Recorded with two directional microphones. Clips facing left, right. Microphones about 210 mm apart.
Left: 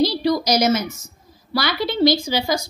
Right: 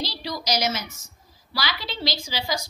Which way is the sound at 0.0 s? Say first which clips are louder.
Left 13 dB; 55° left (ahead or behind).